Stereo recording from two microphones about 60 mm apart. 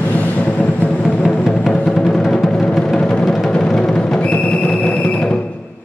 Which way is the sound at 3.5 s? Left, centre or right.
Centre.